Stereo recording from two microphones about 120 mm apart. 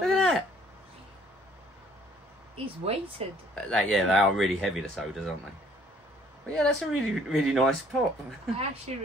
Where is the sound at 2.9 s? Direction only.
60° right (ahead or behind).